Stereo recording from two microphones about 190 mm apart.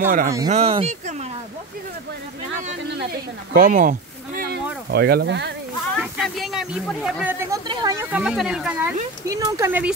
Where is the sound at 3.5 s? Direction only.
45° right (ahead or behind).